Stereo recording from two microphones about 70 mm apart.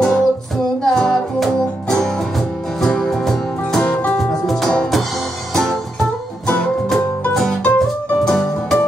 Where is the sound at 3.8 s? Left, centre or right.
Centre.